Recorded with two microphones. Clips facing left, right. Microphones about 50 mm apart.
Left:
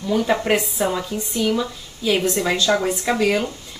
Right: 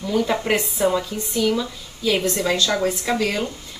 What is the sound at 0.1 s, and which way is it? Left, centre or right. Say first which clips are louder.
Speech: left 2 dB; centre.